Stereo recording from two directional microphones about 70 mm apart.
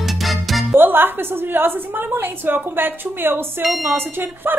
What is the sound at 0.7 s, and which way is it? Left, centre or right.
A woman's voice, right.